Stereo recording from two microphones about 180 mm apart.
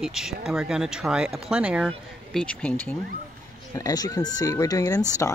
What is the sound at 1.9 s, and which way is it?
Speech, 5° left (ahead or behind).